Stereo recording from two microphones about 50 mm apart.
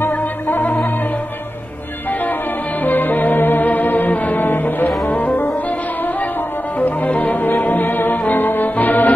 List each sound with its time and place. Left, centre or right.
0.1 s music: left
2.8 s music: left
6.8 s music: left